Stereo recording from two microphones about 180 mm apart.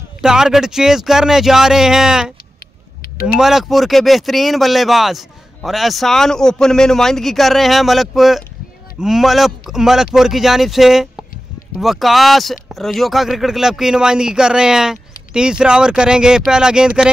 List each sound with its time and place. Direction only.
0.2 s speech: 5° right (ahead or behind)
3.0 s a sound: 55° left (ahead or behind)
3.3 s speech: centre (ahead or behind)